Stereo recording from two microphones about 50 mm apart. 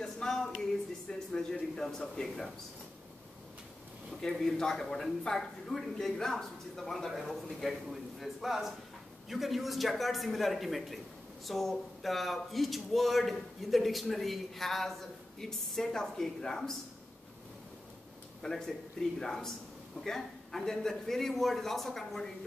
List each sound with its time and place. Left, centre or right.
0.0 s a sound: centre
1.3 s speech: centre
4.2 s speech: centre
18.4 s speech: centre